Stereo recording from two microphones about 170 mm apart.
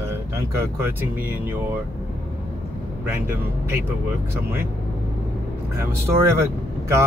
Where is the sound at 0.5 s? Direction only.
15° right (ahead or behind).